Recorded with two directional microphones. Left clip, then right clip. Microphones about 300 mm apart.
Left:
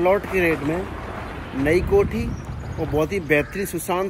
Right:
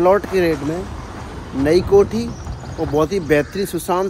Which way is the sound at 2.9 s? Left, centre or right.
Centre.